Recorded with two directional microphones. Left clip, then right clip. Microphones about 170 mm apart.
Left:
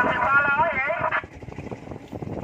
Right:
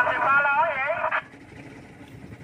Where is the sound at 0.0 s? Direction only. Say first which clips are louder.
Left 1 dB; 30° right (ahead or behind).